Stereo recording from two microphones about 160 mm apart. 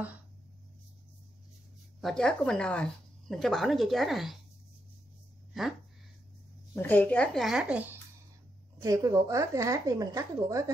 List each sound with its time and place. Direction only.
2.0 s speech: 5° left (ahead or behind)
6.7 s speech: 15° left (ahead or behind); by 8.0 s 10° right (ahead or behind)
8.8 s speech: 20° right (ahead or behind)